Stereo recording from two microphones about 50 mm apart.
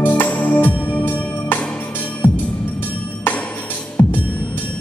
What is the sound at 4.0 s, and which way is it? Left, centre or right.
Music, left.